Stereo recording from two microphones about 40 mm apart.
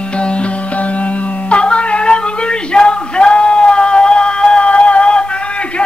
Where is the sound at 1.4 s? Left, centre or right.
Left.